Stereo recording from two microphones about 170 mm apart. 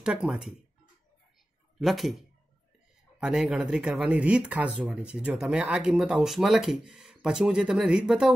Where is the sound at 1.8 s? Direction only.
Centre (ahead or behind).